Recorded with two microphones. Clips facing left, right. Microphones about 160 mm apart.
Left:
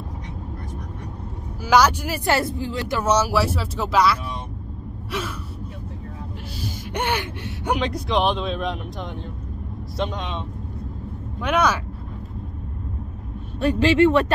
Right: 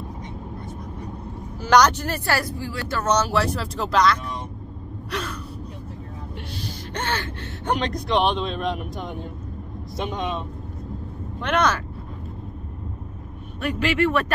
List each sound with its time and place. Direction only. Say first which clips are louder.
1.6 s speech: even; 5° left (ahead or behind)
2.3 s speech: left 3 dB; 20° left (ahead or behind); by 5.3 s 5° left (ahead or behind)
6.6 s a man's voice: left 4 dB; 10° left (ahead or behind); by 10.4 s 10° right (ahead or behind)
11.4 s speech: left 1 dB; 5° left (ahead or behind)
13.6 s speech: left 5 dB; 30° left (ahead or behind)